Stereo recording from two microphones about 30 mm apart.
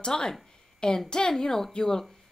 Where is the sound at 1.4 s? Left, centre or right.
Centre.